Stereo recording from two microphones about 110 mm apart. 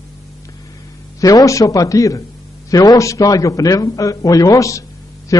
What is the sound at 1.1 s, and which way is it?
A man's voice, 30° left (ahead or behind).